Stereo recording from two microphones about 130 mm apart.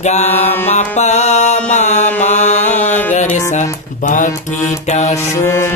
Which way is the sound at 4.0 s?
75° left (ahead or behind).